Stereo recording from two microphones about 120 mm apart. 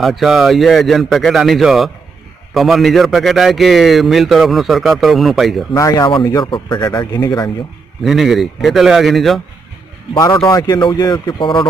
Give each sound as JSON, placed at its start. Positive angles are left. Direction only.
{"t": 0.0, "sound": "a man's voice", "side_deg": 0}
{"t": 5.8, "sound": "speech", "side_deg": 30}
{"t": 6.0, "sound": "speech", "side_deg": 40}
{"t": 8.0, "sound": "a man's voice", "side_deg": 0}
{"t": 10.1, "sound": "speech", "side_deg": 30}